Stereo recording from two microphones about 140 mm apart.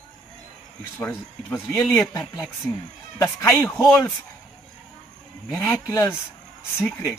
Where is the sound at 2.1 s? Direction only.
20° left (ahead or behind).